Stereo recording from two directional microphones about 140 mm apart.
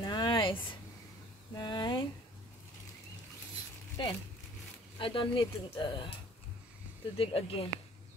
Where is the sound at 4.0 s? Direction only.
35° left (ahead or behind).